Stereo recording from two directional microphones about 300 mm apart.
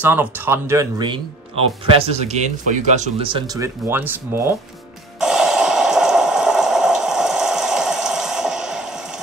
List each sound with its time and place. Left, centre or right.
0.0 s speech: centre
5.2 s water: centre